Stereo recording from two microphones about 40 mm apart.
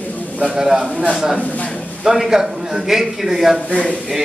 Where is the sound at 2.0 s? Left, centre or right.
Centre.